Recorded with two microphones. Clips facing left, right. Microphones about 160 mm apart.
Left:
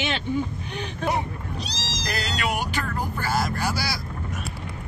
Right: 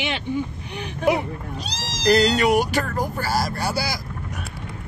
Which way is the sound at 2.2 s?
40° right (ahead or behind).